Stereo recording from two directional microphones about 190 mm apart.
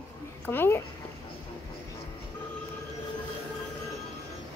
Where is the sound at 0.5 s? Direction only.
10° left (ahead or behind).